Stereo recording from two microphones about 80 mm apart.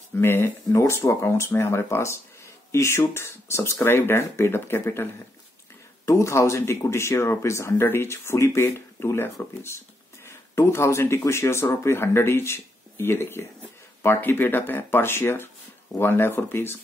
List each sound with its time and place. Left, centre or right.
0.2 s speech: left